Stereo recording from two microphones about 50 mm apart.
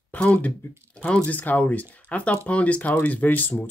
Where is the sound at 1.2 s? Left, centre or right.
Left.